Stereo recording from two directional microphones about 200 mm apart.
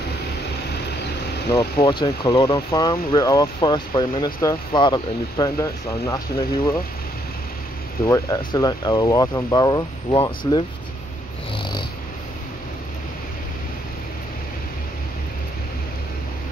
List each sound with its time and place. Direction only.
1.5 s speech: 25° left (ahead or behind)
8.1 s speech: 15° left (ahead or behind)